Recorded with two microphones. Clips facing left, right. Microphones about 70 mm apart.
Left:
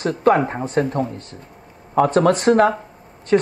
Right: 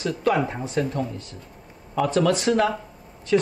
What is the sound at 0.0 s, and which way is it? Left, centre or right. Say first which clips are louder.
Speech: left 6 dB; left.